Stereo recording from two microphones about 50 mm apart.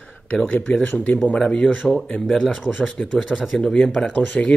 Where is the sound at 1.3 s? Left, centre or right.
Centre.